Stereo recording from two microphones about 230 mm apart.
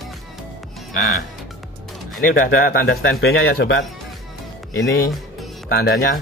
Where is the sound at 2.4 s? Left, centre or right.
Left.